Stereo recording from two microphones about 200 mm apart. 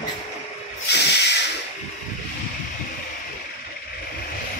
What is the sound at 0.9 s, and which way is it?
Hiss, 60° left (ahead or behind).